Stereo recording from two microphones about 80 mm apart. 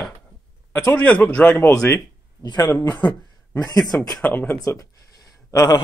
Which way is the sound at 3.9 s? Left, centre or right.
Centre.